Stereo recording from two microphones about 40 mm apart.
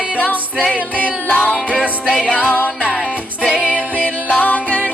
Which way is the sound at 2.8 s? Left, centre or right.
Right.